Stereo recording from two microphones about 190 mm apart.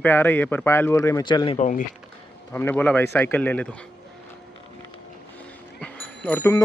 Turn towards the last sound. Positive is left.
turn(degrees=10)  # may be behind; listen again after turning